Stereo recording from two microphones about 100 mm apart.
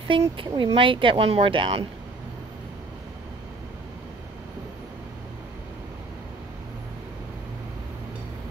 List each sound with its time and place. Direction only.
0.1 s speech: 60° right (ahead or behind)